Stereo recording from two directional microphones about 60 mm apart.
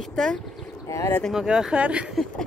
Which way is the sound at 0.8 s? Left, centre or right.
Left.